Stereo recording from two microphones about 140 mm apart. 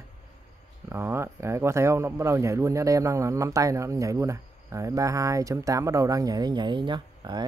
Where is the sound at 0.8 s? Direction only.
20° right (ahead or behind).